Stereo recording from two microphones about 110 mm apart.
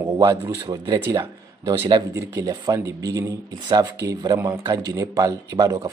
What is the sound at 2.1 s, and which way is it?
Speech, 30° right (ahead or behind).